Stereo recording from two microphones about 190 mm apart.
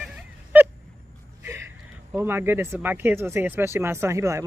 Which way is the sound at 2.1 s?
10° right (ahead or behind).